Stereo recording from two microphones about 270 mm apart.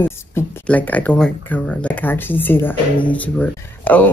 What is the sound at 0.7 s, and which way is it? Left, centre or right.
Speech, centre.